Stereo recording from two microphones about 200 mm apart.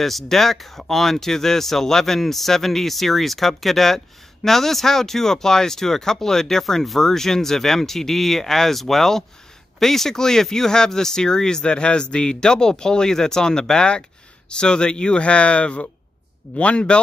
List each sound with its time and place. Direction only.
0.0 s speech: centre (ahead or behind)